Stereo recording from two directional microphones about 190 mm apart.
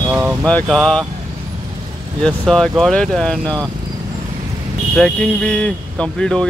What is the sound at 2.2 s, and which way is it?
Speech, centre (ahead or behind).